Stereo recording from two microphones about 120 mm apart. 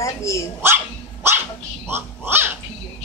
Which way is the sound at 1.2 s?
20° right (ahead or behind).